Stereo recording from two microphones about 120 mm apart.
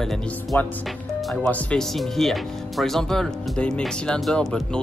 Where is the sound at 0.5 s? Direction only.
15° left (ahead or behind).